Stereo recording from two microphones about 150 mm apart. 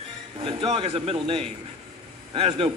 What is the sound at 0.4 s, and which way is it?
A man's voice, 35° right (ahead or behind).